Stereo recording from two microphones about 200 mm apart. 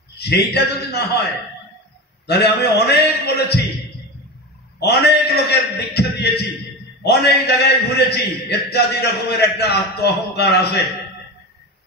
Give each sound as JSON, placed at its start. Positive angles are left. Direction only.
{"t": 0.2, "sound": "a man's voice", "side_deg": 55}
{"t": 2.2, "sound": "a man's voice", "side_deg": 55}
{"t": 4.7, "sound": "a man's voice", "side_deg": 55}